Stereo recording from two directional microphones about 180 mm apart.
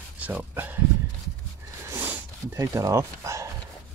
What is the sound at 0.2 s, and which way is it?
Speech, 10° right (ahead or behind).